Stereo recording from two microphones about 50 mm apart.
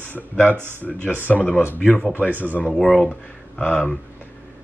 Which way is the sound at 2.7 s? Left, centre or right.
Centre.